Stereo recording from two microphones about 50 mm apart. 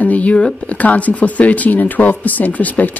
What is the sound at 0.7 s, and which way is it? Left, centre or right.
Speech, left.